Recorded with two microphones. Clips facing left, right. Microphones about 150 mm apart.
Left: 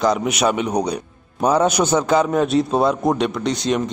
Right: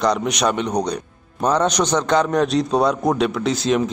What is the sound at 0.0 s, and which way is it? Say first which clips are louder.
A man's voice: left 1 dB; 5° left (ahead or behind).